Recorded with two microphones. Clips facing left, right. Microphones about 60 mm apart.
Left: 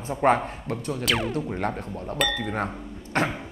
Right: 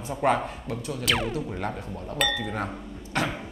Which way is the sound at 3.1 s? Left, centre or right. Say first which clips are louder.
Left 3 dB; left.